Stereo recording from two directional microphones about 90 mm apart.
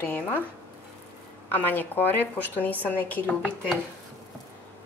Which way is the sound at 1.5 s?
20° left (ahead or behind).